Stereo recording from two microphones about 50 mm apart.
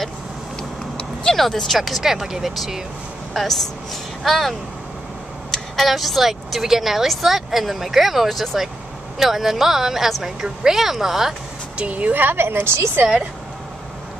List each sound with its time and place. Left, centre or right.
1.2 s a woman's voice: centre
11.8 s a woman's voice: right